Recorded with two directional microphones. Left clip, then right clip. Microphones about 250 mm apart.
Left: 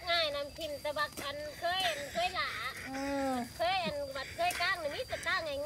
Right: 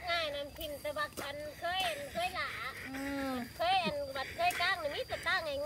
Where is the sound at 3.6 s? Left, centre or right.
Right.